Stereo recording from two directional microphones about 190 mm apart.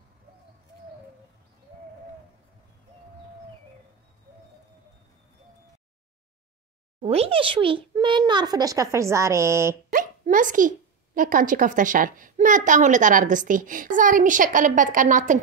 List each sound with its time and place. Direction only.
7.0 s a child's voice: 30° right (ahead or behind); by 9.8 s 15° right (ahead or behind)
9.8 s hiccup: 45° right (ahead or behind)
11.1 s a woman's voice: 45° right (ahead or behind)